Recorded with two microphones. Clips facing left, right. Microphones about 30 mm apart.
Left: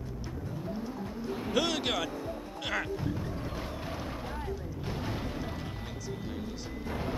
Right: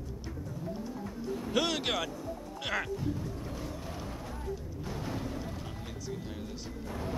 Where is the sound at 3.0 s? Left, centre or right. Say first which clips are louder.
Left 1 dB; left.